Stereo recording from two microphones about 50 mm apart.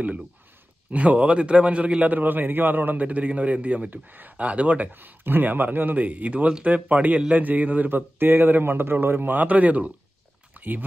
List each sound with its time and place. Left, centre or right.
0.9 s a man's voice: right
4.9 s a man's voice: right
10.5 s a sound: right